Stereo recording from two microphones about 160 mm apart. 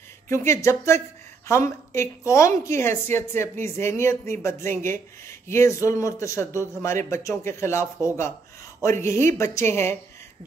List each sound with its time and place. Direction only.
0.3 s speech: 15° left (ahead or behind)